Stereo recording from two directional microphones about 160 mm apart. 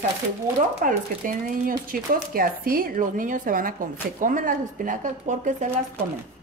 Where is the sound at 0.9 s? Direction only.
60° right (ahead or behind).